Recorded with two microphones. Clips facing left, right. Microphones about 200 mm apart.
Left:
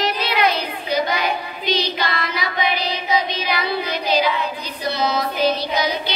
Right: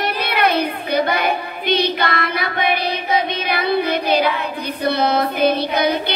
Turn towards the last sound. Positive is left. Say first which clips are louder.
# right 4 dB
turn(degrees=-55)  # may be behind; listen again after turning